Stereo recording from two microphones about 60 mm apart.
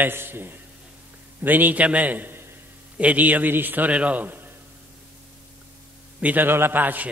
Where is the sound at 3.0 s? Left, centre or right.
Right.